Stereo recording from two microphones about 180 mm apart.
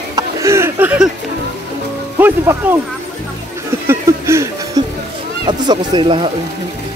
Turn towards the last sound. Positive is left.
turn(degrees=-30)  # may be behind; listen again after turning